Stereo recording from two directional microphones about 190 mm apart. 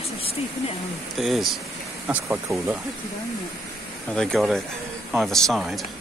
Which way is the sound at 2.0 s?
10° right (ahead or behind).